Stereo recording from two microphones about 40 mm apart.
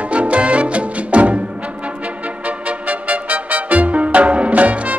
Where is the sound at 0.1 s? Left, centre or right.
Right.